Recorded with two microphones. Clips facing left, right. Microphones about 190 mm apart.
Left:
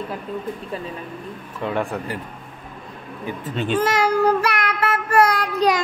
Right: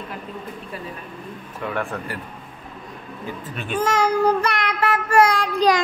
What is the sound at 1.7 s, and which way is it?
Speech, 20° left (ahead or behind).